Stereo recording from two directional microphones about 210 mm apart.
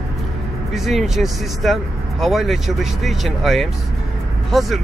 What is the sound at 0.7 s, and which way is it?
Speech, centre (ahead or behind).